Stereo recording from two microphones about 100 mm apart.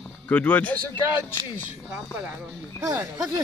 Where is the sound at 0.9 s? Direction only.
25° left (ahead or behind).